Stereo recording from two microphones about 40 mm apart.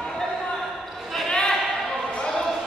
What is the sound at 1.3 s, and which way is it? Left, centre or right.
Basketball bounce, centre.